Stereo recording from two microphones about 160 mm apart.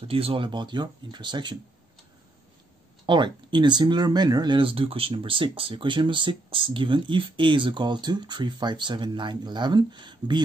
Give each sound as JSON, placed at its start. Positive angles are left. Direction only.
{"t": 0.1, "sound": "speech", "side_deg": -35}
{"t": 3.1, "sound": "speech", "side_deg": -30}